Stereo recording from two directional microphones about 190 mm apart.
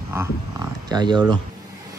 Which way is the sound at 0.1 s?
15° right (ahead or behind).